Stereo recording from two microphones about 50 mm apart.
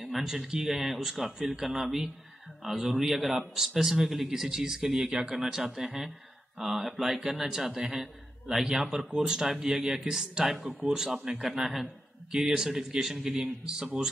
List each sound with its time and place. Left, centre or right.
0.0 s a man's voice: centre
11.7 s a man's voice: centre